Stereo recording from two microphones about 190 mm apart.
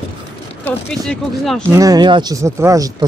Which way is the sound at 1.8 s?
20° right (ahead or behind).